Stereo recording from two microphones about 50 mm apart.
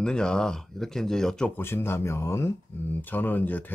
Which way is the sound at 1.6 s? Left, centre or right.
Left.